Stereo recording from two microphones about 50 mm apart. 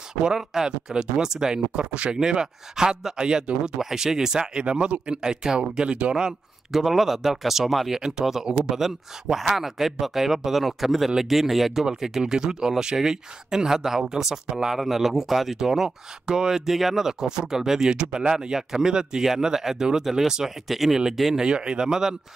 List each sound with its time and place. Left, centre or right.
0.2 s speech: centre